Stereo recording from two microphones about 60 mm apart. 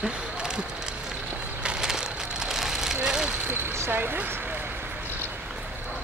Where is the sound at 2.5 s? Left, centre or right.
Centre.